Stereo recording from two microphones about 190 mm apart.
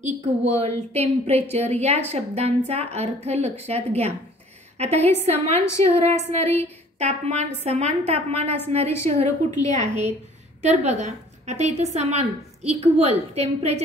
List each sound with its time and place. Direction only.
0.0 s a woman's voice: 35° right (ahead or behind)